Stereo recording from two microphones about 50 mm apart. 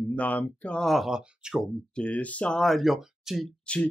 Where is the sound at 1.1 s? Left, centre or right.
Centre.